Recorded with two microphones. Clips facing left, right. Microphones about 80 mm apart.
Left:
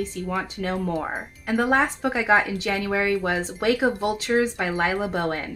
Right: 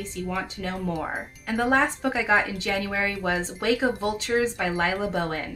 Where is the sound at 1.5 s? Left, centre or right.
Centre.